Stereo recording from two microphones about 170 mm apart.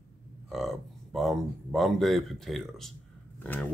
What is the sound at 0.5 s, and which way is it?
Speech, centre (ahead or behind).